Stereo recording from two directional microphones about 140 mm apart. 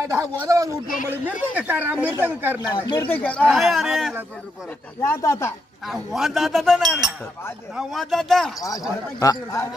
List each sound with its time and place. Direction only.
0.0 s speech: 20° right (ahead or behind)
2.8 s speech: 25° left (ahead or behind)
3.1 s speech: 10° left (ahead or behind)
5.0 s speech: 20° left (ahead or behind)
5.9 s speech: centre (ahead or behind)
8.5 s speech: 25° left (ahead or behind)